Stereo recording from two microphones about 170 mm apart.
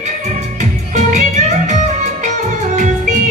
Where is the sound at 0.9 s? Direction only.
45° right (ahead or behind).